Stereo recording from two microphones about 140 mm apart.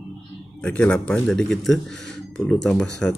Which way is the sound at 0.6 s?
10° left (ahead or behind).